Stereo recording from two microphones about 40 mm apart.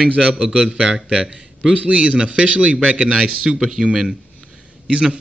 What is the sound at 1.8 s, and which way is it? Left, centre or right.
A man's voice, right.